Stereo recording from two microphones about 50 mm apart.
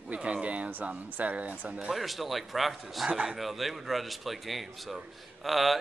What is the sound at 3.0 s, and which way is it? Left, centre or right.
Speech, centre.